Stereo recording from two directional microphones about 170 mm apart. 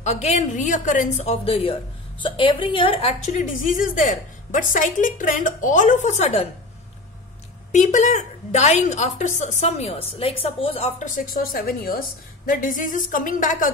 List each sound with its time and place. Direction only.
0.0 s a woman's voice: 40° left (ahead or behind)
7.7 s a woman's voice: 45° left (ahead or behind)